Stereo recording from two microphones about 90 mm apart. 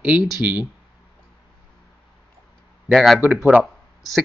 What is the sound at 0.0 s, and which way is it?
Speech, 10° right (ahead or behind).